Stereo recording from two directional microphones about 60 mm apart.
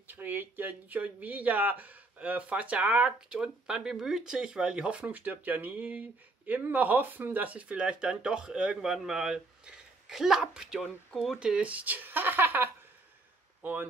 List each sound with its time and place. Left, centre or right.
0.1 s speech: right